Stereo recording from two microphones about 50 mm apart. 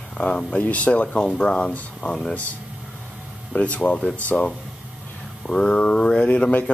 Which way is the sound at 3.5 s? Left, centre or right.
Left.